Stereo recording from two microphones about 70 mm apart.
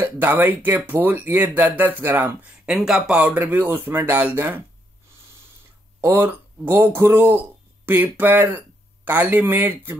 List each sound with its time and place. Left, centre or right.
0.0 s speech: right
2.4 s speech: centre
3.3 s speech: right
5.9 s speech: right